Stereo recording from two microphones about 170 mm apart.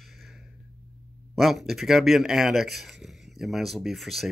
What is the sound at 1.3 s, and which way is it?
Speech, centre (ahead or behind).